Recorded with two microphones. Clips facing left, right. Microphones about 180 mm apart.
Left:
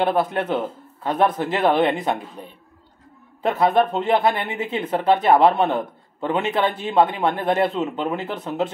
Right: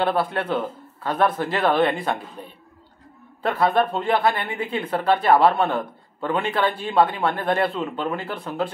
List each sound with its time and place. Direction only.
0.0 s speech: 20° left (ahead or behind)